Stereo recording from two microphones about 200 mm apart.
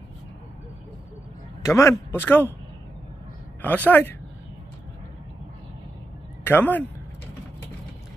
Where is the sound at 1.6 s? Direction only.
15° left (ahead or behind).